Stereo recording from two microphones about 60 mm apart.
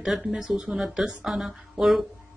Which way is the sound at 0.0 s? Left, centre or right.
Centre.